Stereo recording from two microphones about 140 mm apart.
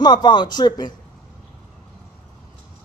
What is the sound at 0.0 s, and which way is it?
Speech, 30° left (ahead or behind).